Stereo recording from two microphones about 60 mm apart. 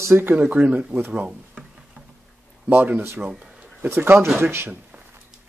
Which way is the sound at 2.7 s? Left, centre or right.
Right.